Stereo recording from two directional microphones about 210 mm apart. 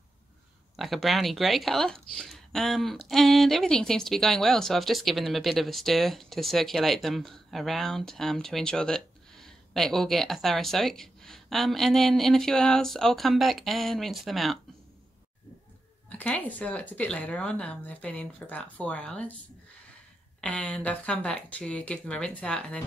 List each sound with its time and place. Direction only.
0.7 s a woman's voice: centre (ahead or behind)
16.1 s speech: 5° left (ahead or behind)
20.3 s a woman's voice: 5° left (ahead or behind)